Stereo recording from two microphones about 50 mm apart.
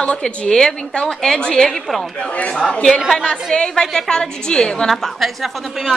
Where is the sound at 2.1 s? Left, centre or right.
Left.